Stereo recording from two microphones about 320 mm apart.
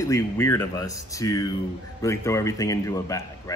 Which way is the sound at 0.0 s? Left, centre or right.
Centre.